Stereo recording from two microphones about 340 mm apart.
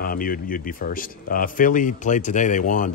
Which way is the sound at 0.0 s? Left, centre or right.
Left.